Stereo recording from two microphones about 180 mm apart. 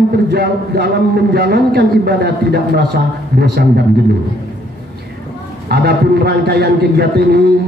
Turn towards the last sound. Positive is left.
turn(degrees=-60)  # may be behind; listen again after turning